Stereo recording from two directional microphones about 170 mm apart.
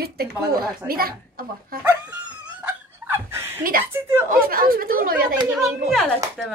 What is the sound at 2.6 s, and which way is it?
Fowl, 15° right (ahead or behind).